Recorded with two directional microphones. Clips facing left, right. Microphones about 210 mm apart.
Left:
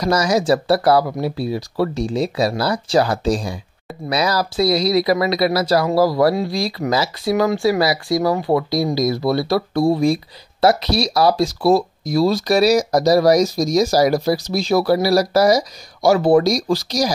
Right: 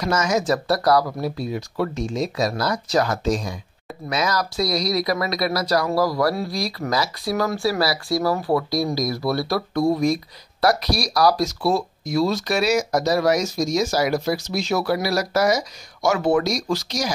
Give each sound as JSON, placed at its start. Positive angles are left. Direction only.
{"t": 0.0, "sound": "speech", "side_deg": 35}
{"t": 11.6, "sound": "speech", "side_deg": 40}